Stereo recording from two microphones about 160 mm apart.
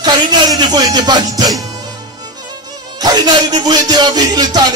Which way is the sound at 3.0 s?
25° right (ahead or behind).